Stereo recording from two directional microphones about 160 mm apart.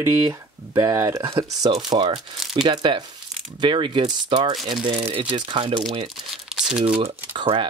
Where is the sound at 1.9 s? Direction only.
35° right (ahead or behind).